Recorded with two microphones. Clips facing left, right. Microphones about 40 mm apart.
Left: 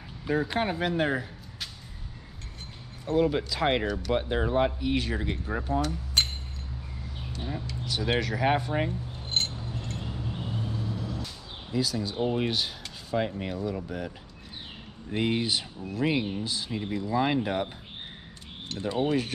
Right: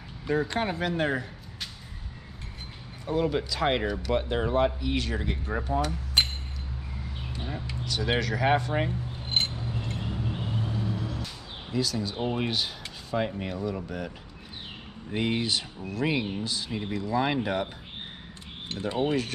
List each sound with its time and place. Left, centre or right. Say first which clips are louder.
0.2 s speech: even; centre
3.2 s speech: left 2 dB; centre
4.8 s speech: left 1 dB; centre
5.7 s speech: even; centre
7.3 s speech: left 1 dB; centre
7.8 s a sound: right 1 dB; centre
8.2 s speech: right 2 dB; centre
9.2 s vehicle: right 2 dB; right
11.7 s speech: even; centre
18.8 s speech: even; centre